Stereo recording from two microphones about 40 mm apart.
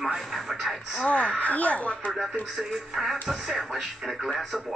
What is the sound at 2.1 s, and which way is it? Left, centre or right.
Speech, centre.